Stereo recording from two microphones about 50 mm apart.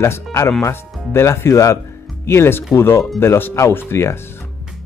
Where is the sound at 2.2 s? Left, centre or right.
Left.